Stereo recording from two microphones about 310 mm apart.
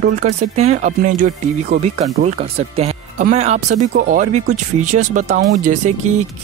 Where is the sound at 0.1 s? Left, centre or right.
Right.